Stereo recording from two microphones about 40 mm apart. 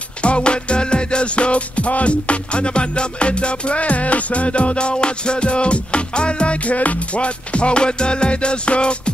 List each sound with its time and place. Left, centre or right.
0.2 s music: left